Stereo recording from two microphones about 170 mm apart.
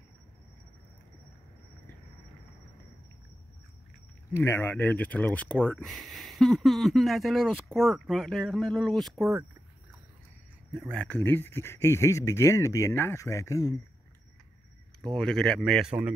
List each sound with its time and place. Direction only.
4.4 s speech: 10° left (ahead or behind)
10.7 s speech: 5° left (ahead or behind); by 13.7 s 20° left (ahead or behind)
15.1 s speech: 5° left (ahead or behind)